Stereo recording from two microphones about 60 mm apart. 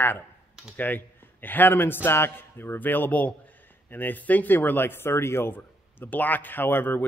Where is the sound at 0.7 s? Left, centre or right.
Left.